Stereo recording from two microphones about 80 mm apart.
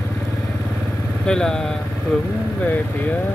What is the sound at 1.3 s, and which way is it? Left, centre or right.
Speech, centre.